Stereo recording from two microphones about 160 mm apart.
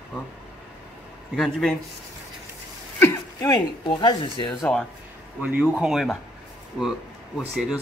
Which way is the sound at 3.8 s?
30° left (ahead or behind).